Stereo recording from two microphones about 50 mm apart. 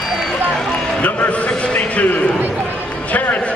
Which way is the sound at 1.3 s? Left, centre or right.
Left.